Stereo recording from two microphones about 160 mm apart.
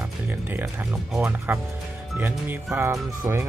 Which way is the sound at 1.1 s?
10° right (ahead or behind).